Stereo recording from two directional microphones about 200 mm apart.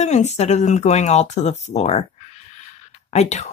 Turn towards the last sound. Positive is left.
turn(degrees=35)  # may be behind; listen again after turning